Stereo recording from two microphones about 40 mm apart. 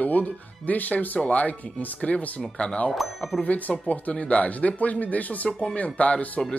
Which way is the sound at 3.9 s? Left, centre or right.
Left.